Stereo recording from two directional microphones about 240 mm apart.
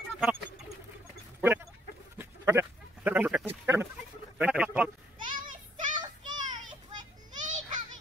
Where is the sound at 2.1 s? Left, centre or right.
Centre.